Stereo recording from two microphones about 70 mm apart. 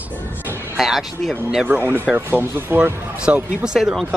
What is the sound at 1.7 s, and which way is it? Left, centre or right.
Speech, right.